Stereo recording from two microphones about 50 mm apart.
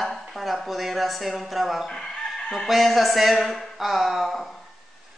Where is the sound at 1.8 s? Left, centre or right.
Centre.